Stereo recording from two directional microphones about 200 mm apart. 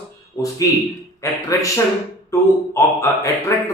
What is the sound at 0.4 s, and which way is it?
Speech, 15° left (ahead or behind).